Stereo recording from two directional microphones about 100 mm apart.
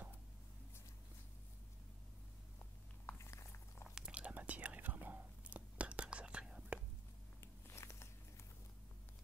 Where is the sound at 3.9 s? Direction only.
10° right (ahead or behind).